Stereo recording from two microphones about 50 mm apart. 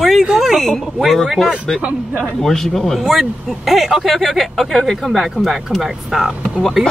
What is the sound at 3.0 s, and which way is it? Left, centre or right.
Speech, centre.